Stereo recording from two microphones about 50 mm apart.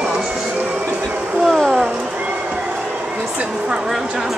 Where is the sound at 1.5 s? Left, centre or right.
Centre.